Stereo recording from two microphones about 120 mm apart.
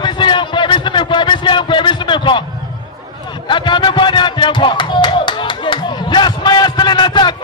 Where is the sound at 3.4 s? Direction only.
40° left (ahead or behind).